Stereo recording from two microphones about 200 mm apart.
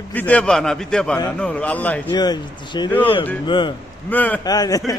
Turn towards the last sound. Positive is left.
turn(degrees=15)  # may be behind; listen again after turning